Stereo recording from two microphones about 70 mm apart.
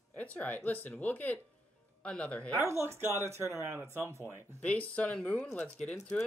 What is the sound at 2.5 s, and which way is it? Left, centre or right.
Speech, right.